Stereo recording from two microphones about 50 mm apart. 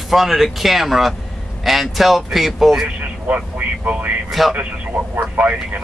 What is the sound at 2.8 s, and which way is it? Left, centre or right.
A man's voice, right.